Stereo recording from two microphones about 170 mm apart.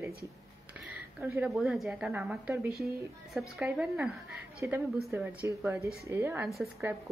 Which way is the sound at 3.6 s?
5° right (ahead or behind).